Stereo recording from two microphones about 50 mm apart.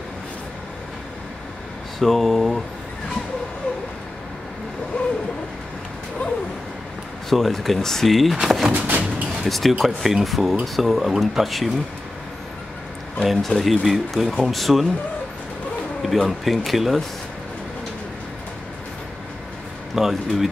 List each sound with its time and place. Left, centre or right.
2.0 s speech: centre
7.2 s speech: centre
8.6 s a sound: right
9.4 s speech: centre
13.3 s speech: centre
16.0 s speech: centre
20.0 s speech: centre